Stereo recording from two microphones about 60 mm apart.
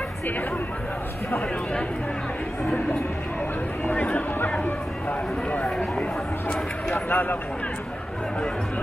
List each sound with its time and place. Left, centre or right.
3.9 s speech: left
7.1 s speech: left